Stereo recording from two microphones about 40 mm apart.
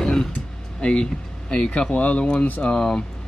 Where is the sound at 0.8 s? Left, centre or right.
Left.